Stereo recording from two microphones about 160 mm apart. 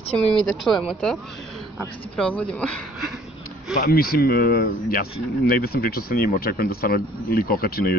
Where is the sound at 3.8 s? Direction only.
70° left (ahead or behind).